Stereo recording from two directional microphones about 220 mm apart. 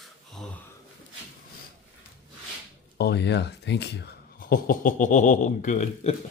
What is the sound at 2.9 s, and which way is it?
Speech, 45° left (ahead or behind).